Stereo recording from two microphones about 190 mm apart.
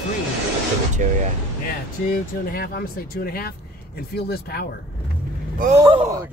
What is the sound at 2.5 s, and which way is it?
Speech, 50° left (ahead or behind).